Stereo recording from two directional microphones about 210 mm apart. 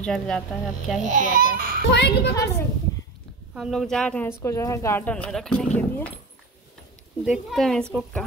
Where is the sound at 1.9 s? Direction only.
55° left (ahead or behind).